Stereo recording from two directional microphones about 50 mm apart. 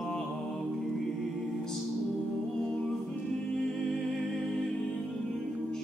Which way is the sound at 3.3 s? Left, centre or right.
Centre.